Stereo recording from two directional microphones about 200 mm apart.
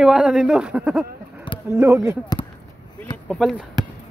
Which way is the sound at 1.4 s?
25° left (ahead or behind).